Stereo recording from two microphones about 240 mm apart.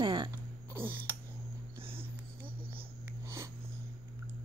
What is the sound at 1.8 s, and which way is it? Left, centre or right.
Whispering, right.